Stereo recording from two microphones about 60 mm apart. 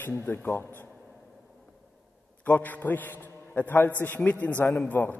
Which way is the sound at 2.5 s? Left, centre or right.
Left.